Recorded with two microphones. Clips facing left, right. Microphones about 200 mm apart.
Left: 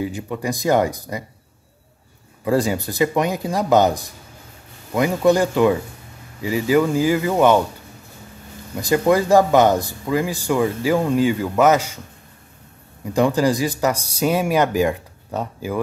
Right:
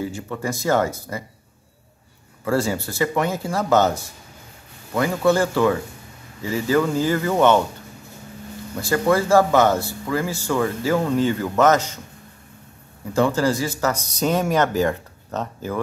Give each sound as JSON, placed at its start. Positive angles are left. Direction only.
{"t": 0.0, "sound": "speech", "side_deg": 15}
{"t": 2.4, "sound": "speech", "side_deg": 15}
{"t": 8.7, "sound": "speech", "side_deg": 15}
{"t": 13.1, "sound": "speech", "side_deg": 15}